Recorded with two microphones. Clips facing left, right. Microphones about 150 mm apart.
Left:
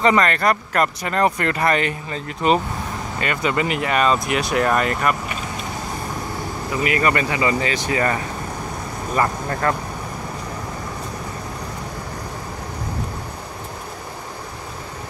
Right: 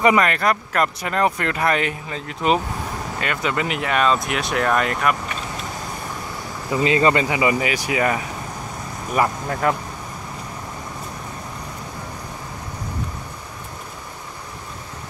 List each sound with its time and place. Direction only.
0.0 s speech: 10° right (ahead or behind)
6.7 s speech: 25° right (ahead or behind); by 9.8 s 5° right (ahead or behind)